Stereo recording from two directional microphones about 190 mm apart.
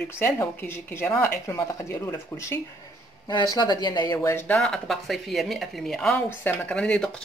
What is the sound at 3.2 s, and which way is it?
Speech, 20° left (ahead or behind).